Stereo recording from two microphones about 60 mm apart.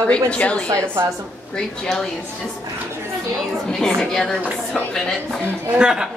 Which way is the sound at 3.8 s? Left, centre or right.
Centre.